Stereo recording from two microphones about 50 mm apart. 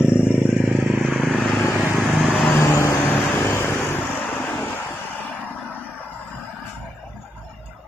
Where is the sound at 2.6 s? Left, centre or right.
Left.